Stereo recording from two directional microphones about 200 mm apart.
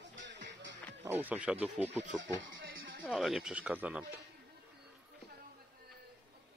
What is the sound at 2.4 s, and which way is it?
Music, 75° right (ahead or behind).